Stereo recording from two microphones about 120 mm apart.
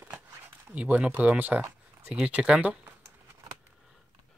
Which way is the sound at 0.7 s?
10° right (ahead or behind).